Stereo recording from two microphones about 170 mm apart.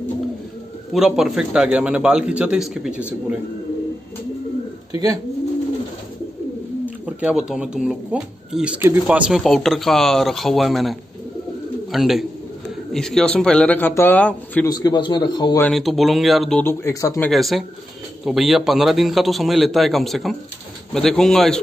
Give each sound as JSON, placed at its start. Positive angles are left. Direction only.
{"t": 0.9, "sound": "speech", "side_deg": 0}
{"t": 7.1, "sound": "a man's voice", "side_deg": -5}
{"t": 14.7, "sound": "a man's voice", "side_deg": 25}
{"t": 15.6, "sound": "speech", "side_deg": 0}
{"t": 16.6, "sound": "a man's voice", "side_deg": 15}
{"t": 17.3, "sound": "speech", "side_deg": 0}